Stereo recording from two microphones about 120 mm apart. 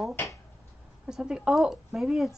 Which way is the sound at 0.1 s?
20° left (ahead or behind).